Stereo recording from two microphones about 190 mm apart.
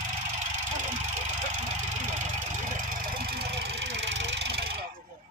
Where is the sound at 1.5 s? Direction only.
40° right (ahead or behind); by 4.7 s 60° right (ahead or behind).